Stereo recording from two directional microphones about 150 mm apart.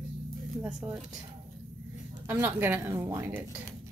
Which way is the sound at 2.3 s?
15° right (ahead or behind).